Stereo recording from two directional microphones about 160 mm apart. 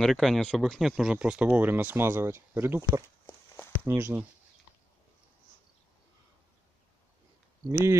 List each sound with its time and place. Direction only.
0.0 s speech: centre (ahead or behind)
7.6 s speech: 20° right (ahead or behind)